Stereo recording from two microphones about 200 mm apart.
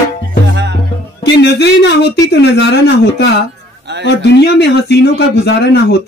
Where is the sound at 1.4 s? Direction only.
55° left (ahead or behind).